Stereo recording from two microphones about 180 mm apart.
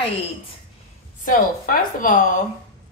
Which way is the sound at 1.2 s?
50° left (ahead or behind).